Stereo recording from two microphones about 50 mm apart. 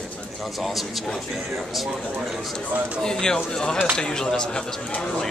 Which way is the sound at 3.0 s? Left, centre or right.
Centre.